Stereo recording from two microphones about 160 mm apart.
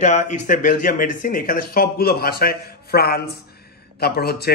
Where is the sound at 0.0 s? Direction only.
50° left (ahead or behind).